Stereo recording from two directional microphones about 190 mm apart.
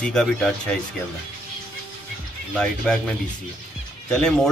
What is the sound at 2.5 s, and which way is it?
Speech, 5° left (ahead or behind).